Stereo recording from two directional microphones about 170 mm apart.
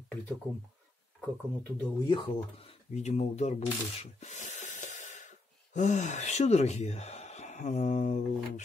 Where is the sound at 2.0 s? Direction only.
30° left (ahead or behind).